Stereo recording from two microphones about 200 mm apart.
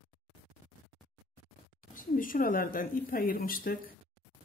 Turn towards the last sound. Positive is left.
turn(degrees=45)  # may be behind; listen again after turning